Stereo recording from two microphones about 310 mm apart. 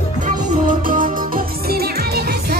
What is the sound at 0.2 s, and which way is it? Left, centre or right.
Music, right.